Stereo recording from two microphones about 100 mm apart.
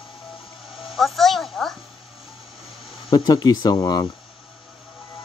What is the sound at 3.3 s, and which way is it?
Speech, 40° left (ahead or behind).